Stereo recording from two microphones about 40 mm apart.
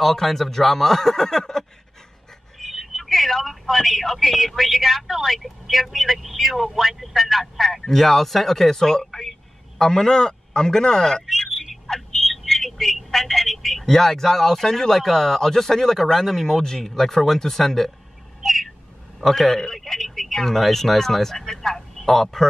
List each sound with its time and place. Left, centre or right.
0.0 s a man's voice: centre
18.4 s a sound: centre
19.2 s a man's voice: centre